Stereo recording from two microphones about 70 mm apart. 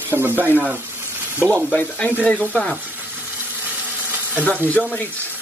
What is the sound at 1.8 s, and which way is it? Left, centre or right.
Sizzle, centre.